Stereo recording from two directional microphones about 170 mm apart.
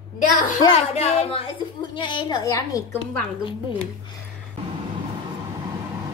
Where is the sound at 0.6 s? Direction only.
30° left (ahead or behind).